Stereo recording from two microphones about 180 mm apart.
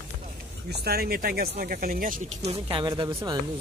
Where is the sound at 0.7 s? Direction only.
60° right (ahead or behind); by 2.8 s 40° right (ahead or behind).